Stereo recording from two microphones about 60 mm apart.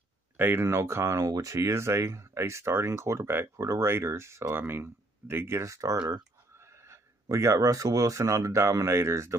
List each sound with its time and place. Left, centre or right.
0.4 s speech: right
0.7 s speech: right
1.2 s speech: right
4.6 s speech: right
5.7 s speech: right
6.6 s speech: right